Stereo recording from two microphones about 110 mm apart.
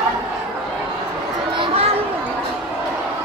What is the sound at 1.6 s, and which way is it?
Children playing, 60° right (ahead or behind).